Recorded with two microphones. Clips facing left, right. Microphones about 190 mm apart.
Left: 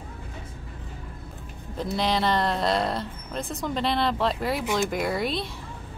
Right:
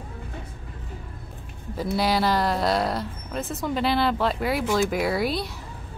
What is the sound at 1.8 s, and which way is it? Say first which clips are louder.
Speech: right 2 dB; 5° right (ahead or behind).